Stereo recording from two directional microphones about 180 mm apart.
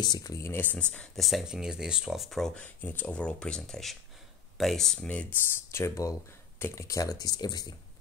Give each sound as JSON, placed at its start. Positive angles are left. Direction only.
{"t": 0.0, "sound": "speech", "side_deg": 20}